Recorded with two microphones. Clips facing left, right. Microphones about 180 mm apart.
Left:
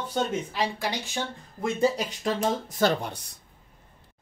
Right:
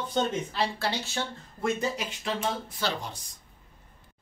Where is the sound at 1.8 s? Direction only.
40° left (ahead or behind); by 3.3 s 65° left (ahead or behind).